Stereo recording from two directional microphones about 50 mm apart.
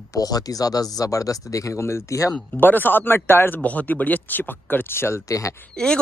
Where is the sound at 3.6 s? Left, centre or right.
Left.